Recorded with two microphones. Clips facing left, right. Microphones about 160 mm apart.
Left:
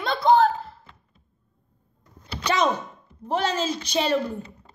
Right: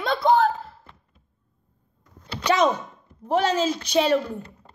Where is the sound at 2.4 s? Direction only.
5° right (ahead or behind).